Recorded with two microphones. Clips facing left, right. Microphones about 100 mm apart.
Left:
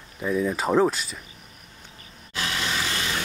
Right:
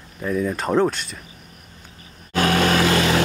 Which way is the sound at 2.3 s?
55° right (ahead or behind).